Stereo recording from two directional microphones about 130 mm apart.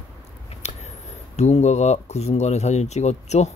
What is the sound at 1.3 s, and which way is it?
Speech, 60° left (ahead or behind).